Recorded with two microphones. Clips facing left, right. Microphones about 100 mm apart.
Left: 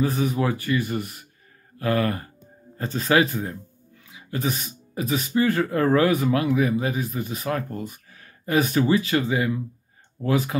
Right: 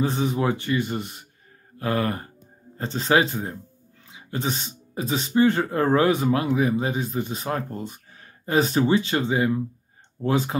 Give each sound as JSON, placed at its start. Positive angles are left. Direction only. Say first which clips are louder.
{"t": 0.0, "sound": "speech", "louder": "even", "side_deg": -25}